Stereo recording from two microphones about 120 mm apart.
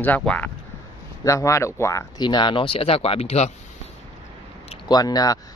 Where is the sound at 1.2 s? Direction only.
25° left (ahead or behind).